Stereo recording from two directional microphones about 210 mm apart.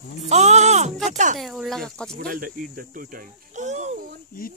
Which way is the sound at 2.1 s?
45° right (ahead or behind).